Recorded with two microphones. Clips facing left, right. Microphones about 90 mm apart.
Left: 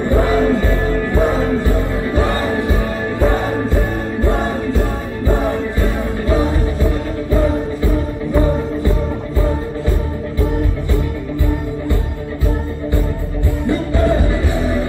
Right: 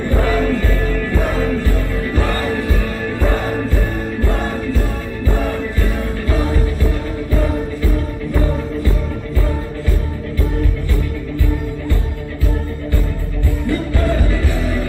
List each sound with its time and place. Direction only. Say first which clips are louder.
0.0 s music: left 3 dB; 20° left (ahead or behind)
4.2 s music: left 4 dB; 20° left (ahead or behind)
13.7 s music: left 3 dB; 20° left (ahead or behind)